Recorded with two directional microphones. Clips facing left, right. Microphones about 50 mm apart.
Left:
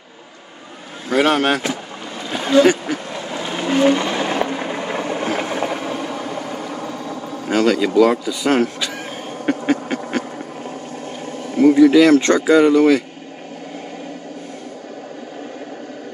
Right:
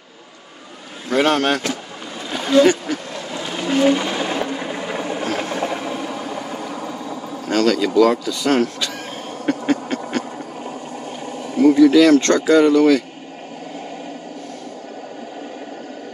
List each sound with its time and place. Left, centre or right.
1.1 s speech: centre
2.3 s duck: centre
3.6 s a sound: centre
4.3 s vehicle: left; by 5.9 s centre
7.4 s speech: centre
9.5 s a sound: centre
11.6 s speech: centre